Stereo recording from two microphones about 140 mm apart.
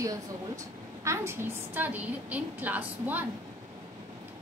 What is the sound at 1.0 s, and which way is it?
A woman's voice, 20° right (ahead or behind).